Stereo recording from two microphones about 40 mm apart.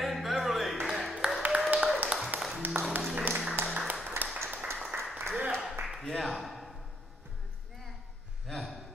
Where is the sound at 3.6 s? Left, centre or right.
Right.